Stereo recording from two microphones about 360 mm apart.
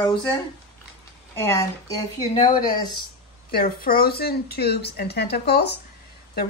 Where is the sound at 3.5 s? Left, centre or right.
Left.